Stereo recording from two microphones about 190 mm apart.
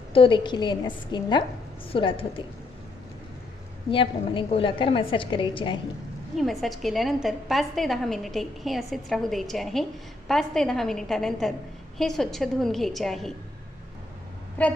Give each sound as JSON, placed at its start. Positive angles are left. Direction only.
{"t": 0.1, "sound": "a woman's voice", "side_deg": 25}
{"t": 3.9, "sound": "a woman's voice", "side_deg": 25}
{"t": 6.3, "sound": "a woman's voice", "side_deg": 0}
{"t": 14.6, "sound": "speech", "side_deg": 10}